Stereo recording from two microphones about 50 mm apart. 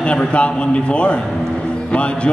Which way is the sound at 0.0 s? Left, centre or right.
Left.